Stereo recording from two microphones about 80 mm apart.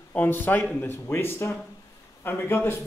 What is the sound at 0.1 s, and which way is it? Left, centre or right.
A man's voice, left.